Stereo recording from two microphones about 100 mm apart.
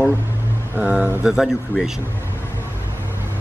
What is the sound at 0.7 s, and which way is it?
Speech, 20° right (ahead or behind).